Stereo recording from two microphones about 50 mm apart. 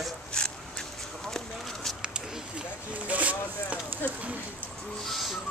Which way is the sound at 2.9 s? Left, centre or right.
Right.